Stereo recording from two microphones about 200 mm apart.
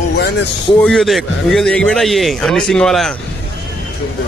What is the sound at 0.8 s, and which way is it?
A man's voice, centre (ahead or behind).